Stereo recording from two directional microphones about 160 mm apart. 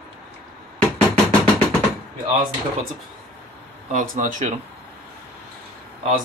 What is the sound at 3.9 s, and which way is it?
Speech, 55° right (ahead or behind).